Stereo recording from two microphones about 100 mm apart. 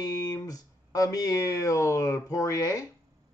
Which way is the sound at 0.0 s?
40° left (ahead or behind).